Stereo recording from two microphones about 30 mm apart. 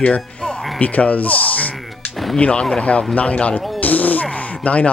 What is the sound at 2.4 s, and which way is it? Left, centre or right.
Speech, left.